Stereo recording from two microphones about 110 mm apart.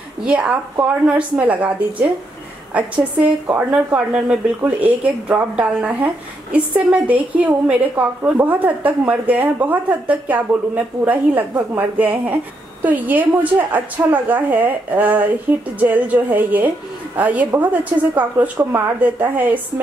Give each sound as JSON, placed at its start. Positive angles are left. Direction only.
{"t": 0.2, "sound": "a woman's voice", "side_deg": -10}